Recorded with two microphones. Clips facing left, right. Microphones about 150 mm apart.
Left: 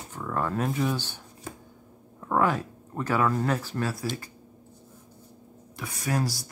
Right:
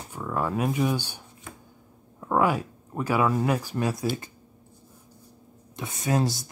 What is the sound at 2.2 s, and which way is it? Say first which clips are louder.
Speech: right 1 dB; 10° right (ahead or behind).